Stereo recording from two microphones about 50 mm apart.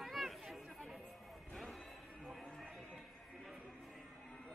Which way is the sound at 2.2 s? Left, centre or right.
Centre.